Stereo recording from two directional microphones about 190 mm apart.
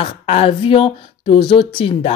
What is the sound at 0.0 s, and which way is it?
Speech, 30° left (ahead or behind).